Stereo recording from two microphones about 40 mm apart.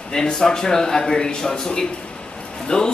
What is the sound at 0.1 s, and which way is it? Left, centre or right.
Speech, centre.